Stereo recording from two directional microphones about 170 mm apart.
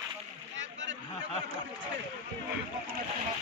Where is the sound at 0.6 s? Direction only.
90° right.